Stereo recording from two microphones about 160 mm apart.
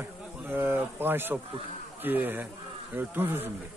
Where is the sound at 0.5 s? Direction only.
15° right (ahead or behind).